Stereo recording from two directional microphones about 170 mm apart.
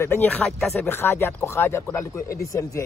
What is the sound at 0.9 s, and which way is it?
Speech, 15° left (ahead or behind).